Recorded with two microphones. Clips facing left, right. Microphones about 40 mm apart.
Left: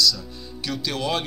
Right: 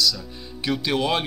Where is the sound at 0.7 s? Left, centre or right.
Right.